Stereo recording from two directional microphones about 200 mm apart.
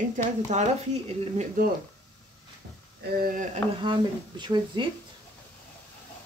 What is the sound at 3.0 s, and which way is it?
Speech, 40° right (ahead or behind).